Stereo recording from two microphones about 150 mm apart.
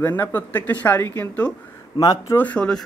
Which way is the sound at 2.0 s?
25° left (ahead or behind).